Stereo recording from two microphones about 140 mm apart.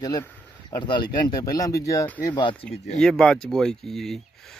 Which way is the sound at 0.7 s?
35° left (ahead or behind).